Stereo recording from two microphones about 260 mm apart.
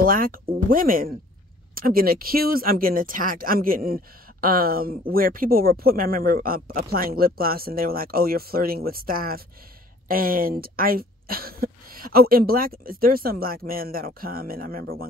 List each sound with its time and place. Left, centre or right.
0.0 s speech: right